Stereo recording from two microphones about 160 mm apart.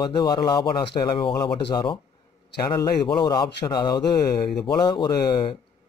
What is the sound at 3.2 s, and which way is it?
Speech, 30° left (ahead or behind).